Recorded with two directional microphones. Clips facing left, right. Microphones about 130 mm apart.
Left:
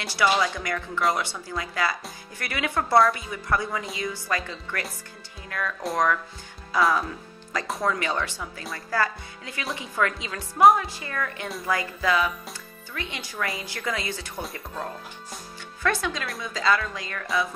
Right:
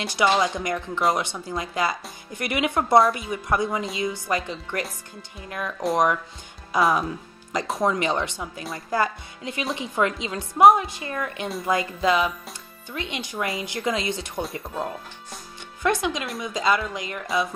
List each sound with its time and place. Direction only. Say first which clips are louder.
0.0 s speech: right 2 dB; 20° right (ahead or behind)